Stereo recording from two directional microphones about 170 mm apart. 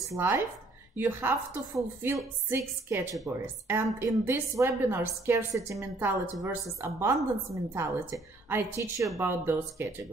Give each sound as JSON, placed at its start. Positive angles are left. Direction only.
{"t": 0.1, "sound": "a woman's voice", "side_deg": -15}
{"t": 2.5, "sound": "a woman's voice", "side_deg": -15}